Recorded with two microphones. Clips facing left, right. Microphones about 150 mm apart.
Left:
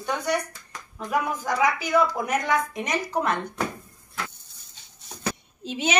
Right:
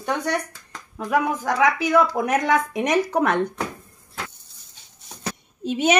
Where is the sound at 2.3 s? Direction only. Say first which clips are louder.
Right 4 dB; 70° right (ahead or behind).